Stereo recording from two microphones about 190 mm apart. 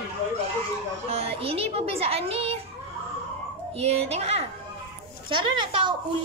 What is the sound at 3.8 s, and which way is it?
Speech, 35° right (ahead or behind).